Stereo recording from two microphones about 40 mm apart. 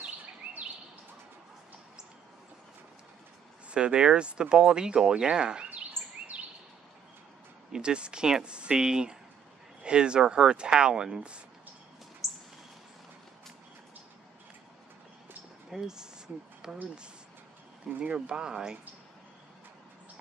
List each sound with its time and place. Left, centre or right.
0.4 s bird: right
3.7 s speech: right
6.0 s a sound: right
7.7 s speech: right
12.2 s a sound: centre
15.7 s speech: centre
18.1 s speech: right